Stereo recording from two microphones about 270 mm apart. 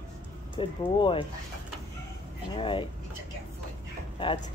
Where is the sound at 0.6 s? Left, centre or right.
Centre.